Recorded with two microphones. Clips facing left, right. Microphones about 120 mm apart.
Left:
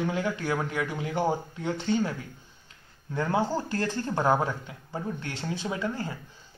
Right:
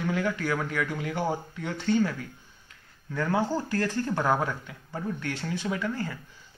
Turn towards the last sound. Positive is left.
turn(degrees=25)  # may be behind; listen again after turning